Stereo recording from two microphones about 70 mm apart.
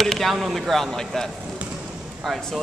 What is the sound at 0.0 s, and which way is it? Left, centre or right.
Speech, centre.